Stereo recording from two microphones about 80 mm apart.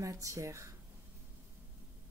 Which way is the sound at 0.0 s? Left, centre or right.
Right.